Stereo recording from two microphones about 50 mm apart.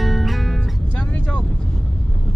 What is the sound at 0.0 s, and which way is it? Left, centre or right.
Music, centre.